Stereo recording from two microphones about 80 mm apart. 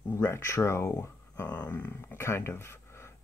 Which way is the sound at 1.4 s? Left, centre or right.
Left.